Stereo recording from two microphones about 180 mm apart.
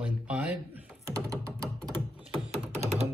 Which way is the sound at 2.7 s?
35° right (ahead or behind).